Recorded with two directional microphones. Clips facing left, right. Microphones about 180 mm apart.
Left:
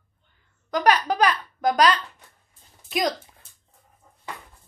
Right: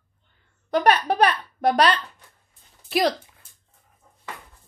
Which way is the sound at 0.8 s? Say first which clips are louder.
Even; 55° right (ahead or behind).